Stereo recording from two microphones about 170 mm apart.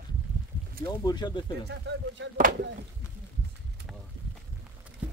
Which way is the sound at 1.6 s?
90° right.